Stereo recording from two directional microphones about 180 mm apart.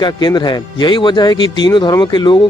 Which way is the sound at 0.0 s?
25° left (ahead or behind).